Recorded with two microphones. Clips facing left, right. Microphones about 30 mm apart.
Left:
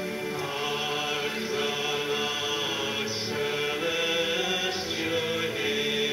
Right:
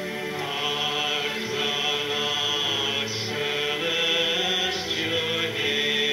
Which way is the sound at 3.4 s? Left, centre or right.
Right.